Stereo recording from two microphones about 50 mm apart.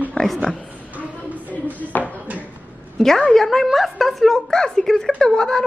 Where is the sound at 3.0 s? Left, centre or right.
Centre.